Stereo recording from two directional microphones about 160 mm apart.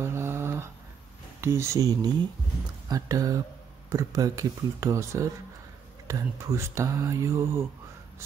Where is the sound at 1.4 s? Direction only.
15° right (ahead or behind).